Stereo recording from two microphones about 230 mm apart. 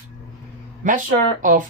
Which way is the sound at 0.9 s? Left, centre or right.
Right.